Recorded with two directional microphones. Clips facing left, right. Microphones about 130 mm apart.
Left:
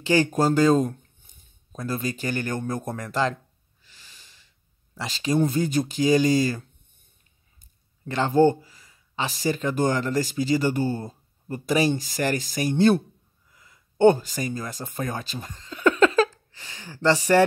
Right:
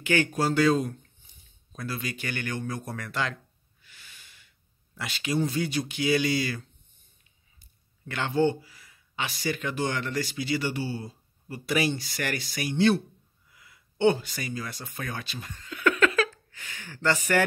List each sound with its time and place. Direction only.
0.0 s speech: 35° left (ahead or behind)
3.8 s snort: 35° left (ahead or behind)
4.9 s speech: 35° left (ahead or behind)
8.0 s speech: 40° left (ahead or behind)
13.5 s gasp: 40° left (ahead or behind)
15.0 s speech: 40° left (ahead or behind)